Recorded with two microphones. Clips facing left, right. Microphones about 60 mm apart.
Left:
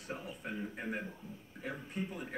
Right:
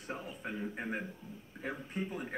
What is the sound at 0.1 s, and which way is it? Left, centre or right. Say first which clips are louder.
A man's voice: right 1 dB; centre.